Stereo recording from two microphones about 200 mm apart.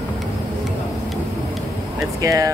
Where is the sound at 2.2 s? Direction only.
15° right (ahead or behind).